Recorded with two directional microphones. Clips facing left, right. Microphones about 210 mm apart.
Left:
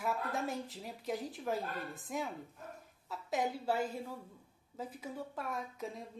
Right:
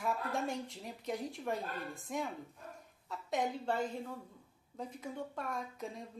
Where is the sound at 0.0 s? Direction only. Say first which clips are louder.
Even; 5° left (ahead or behind).